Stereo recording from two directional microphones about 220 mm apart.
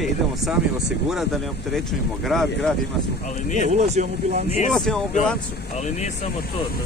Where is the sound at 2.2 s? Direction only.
Centre (ahead or behind).